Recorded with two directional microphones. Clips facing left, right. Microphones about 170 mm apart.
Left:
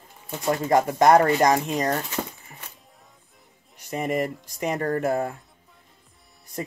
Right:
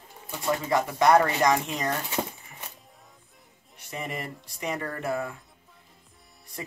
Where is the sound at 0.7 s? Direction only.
45° left (ahead or behind).